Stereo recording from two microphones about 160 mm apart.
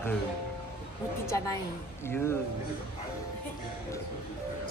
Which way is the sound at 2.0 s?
15° left (ahead or behind).